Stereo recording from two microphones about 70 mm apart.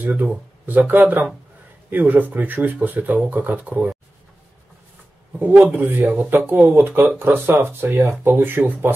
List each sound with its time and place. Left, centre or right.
0.7 s speech: right
5.4 s speech: right